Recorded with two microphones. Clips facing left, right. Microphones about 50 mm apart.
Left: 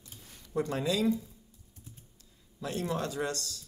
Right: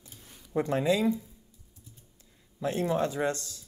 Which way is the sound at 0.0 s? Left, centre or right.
Right.